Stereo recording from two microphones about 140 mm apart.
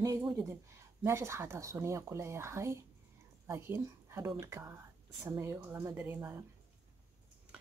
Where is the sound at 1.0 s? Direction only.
20° right (ahead or behind).